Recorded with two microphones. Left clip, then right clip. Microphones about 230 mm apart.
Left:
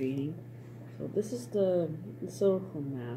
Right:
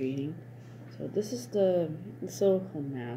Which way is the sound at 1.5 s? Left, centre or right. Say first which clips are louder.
Right 2 dB; right.